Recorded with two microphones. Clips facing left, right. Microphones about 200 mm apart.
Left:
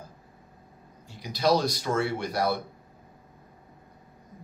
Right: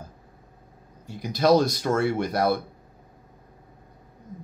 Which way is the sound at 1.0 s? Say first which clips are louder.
Right 4 dB; 50° right (ahead or behind).